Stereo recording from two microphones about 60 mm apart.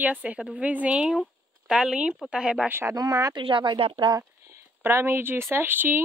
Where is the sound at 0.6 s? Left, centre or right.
Right.